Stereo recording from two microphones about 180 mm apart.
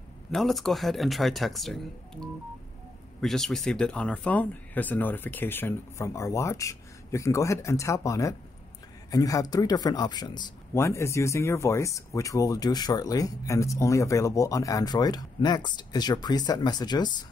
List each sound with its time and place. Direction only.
0.3 s speech: centre (ahead or behind); by 17.2 s 25° left (ahead or behind)